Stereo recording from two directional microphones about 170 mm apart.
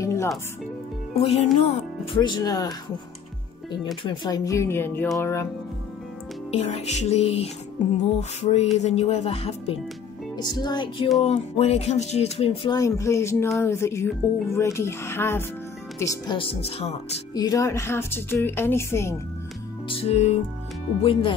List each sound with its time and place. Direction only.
0.0 s music: 15° left (ahead or behind)
1.1 s music: 35° left (ahead or behind)
2.1 s music: 25° left (ahead or behind)
4.0 s speech: 25° left (ahead or behind)
6.5 s music: 40° left (ahead or behind)
10.3 s music: 25° left (ahead or behind)
11.1 s music: 35° left (ahead or behind)
12.7 s speech: 20° left (ahead or behind)
16.0 s music: 30° left (ahead or behind)
17.3 s speech: 20° left (ahead or behind)
20.0 s music: 40° left (ahead or behind)